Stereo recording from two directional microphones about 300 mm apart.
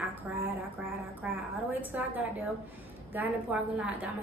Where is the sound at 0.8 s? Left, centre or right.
Centre.